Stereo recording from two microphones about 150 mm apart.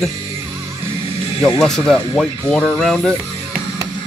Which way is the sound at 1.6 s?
5° left (ahead or behind).